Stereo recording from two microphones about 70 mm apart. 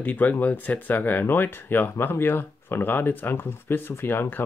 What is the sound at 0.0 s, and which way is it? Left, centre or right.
Speech, left.